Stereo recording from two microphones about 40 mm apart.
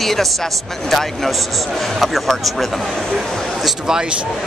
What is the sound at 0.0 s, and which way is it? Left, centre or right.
Speech, centre.